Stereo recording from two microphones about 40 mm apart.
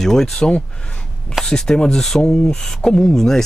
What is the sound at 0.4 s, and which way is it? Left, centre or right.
Speech, left.